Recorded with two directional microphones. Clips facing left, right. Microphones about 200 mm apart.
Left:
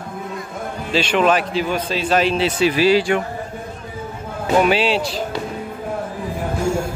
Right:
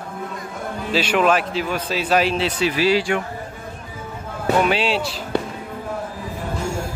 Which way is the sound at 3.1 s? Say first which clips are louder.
Left 3 dB; 30° left (ahead or behind).